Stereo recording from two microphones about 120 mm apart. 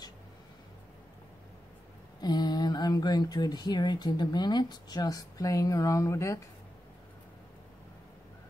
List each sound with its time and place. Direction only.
2.2 s speech: 35° left (ahead or behind)